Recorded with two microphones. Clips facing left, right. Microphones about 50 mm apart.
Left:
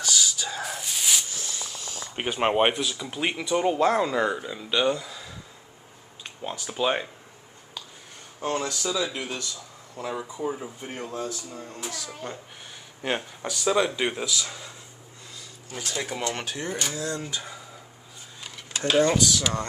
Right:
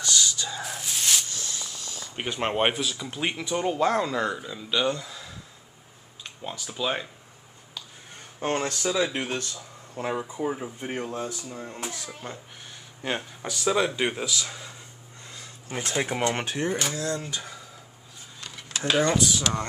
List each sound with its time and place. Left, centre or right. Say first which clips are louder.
0.1 s a sound: right 1 dB; centre
2.1 s speech: left 4 dB; centre
2.6 s speech: left 2 dB; centre
6.5 s speech: left 3 dB; centre
8.4 s speech: right 1 dB; right
10.1 s speech: even; right
12.1 s speech: left 2 dB; centre
15.3 s speech: right 4 dB; right
16.6 s speech: right 2 dB; centre
18.8 s speech: left 2 dB; centre
19.1 s speech: left 1 dB; right